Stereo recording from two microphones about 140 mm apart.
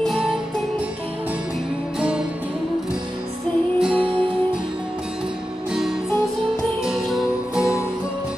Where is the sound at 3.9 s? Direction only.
40° right (ahead or behind).